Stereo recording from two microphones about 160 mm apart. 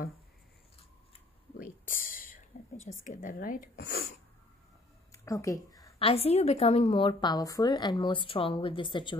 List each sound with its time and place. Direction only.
1.6 s whispering: 60° left (ahead or behind)
3.0 s speech: 55° left (ahead or behind)
5.1 s a sound: 20° left (ahead or behind)
5.9 s a woman's voice: 40° left (ahead or behind)